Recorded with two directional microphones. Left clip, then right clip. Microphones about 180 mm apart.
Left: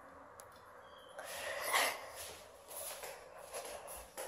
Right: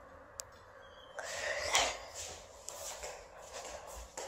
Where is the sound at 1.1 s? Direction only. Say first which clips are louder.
Right 5 dB; 10° right (ahead or behind).